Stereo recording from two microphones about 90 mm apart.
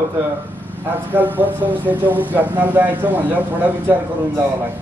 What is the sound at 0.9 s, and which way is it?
Speech, 20° right (ahead or behind).